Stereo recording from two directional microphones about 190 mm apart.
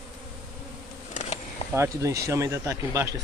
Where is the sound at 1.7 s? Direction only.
15° right (ahead or behind).